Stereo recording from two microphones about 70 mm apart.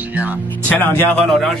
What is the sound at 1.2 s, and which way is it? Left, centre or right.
Speech, centre.